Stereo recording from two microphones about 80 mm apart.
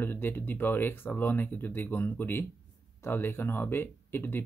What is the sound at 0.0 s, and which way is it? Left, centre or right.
Speech, left.